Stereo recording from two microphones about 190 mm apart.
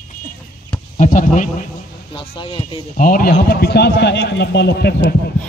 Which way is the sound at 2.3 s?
25° left (ahead or behind).